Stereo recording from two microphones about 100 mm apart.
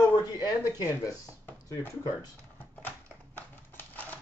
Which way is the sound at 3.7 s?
20° left (ahead or behind).